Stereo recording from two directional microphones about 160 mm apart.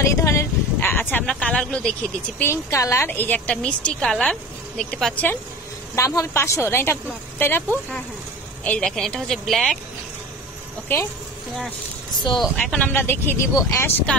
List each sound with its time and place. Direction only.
0.0 s a woman's voice: 20° left (ahead or behind); by 9.8 s centre (ahead or behind)
12.4 s a woman's voice: 5° left (ahead or behind)